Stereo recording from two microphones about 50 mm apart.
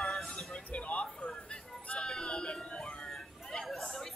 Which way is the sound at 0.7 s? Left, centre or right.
Left.